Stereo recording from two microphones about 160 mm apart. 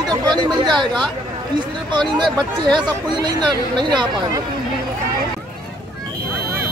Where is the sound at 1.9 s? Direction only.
30° right (ahead or behind).